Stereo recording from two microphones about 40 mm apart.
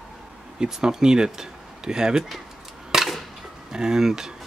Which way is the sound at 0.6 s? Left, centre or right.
Centre.